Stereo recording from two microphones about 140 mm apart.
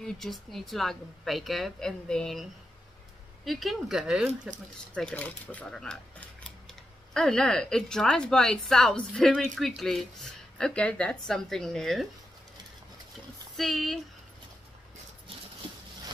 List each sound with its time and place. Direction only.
0.0 s speech: centre (ahead or behind)
3.4 s speech: centre (ahead or behind)
4.9 s speech: 10° left (ahead or behind)
13.6 s speech: centre (ahead or behind)